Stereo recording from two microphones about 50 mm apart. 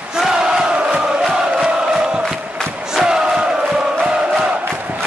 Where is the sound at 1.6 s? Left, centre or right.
Centre.